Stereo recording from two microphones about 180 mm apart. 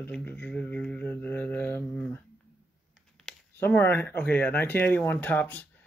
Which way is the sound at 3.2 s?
10° left (ahead or behind).